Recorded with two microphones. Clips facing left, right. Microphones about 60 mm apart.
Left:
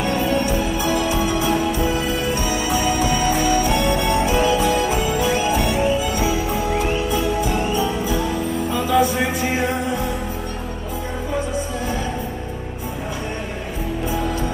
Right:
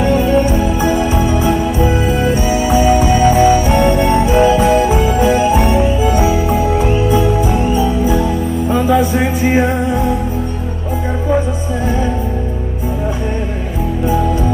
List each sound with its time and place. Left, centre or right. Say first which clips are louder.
0.0 s music: right 7 dB; right